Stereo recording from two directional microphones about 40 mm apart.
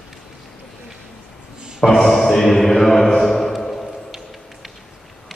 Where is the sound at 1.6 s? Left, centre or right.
Centre.